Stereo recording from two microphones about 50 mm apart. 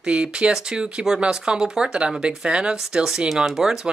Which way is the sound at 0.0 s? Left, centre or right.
Right.